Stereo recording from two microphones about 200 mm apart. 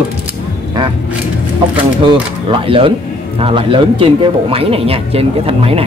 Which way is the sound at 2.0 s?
25° right (ahead or behind).